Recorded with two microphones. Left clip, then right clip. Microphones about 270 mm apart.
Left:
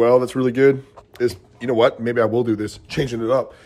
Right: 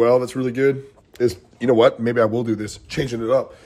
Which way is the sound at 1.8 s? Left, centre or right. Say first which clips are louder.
Even; centre.